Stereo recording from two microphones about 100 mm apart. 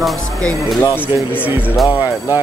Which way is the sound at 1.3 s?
20° left (ahead or behind).